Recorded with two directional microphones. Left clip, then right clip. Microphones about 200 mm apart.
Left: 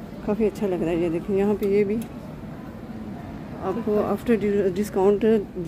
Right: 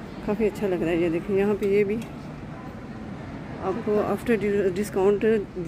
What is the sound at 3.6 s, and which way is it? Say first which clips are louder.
Speech: left 1 dB; 5° left (ahead or behind).